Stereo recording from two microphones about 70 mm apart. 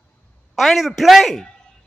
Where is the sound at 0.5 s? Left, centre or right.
Centre.